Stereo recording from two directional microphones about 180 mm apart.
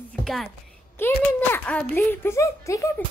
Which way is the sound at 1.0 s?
10° left (ahead or behind).